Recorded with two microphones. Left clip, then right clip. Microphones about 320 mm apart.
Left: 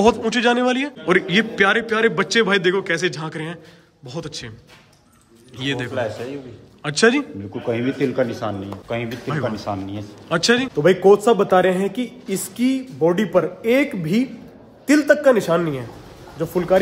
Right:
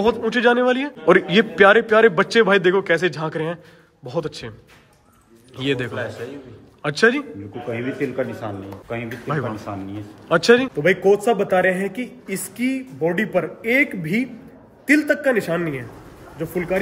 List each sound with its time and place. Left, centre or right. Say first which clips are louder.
0.0 s a man's voice: left 1 dB; centre
5.6 s a man's voice: even; centre
7.7 s speech: left 3 dB; left
10.2 s a man's voice: right 3 dB; centre
10.8 s speech: left 3 dB; centre